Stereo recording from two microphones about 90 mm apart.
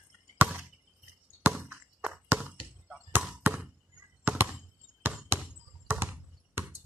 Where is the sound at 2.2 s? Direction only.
20° right (ahead or behind).